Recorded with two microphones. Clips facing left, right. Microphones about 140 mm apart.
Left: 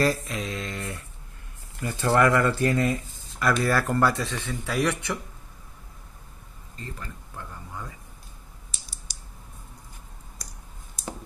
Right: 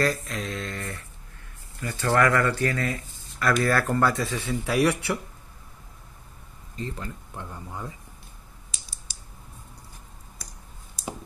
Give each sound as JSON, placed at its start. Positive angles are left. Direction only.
{"t": 0.3, "sound": "mantra", "side_deg": 5}
{"t": 1.8, "sound": "speech", "side_deg": 20}
{"t": 3.3, "sound": "speech", "side_deg": 5}
{"t": 6.8, "sound": "speech", "side_deg": -20}